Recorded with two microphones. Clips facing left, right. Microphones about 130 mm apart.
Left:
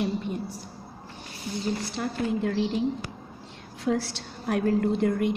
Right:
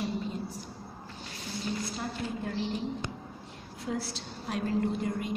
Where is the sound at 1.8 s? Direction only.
80° left.